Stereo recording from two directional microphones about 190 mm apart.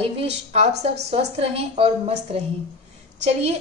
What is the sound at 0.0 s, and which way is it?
A woman's voice, 30° right (ahead or behind).